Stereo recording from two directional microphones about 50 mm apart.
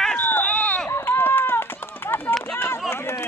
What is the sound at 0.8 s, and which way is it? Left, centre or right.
Run, left.